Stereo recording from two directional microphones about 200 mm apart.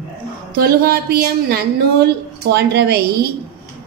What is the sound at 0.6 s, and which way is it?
A woman's voice, 50° right (ahead or behind).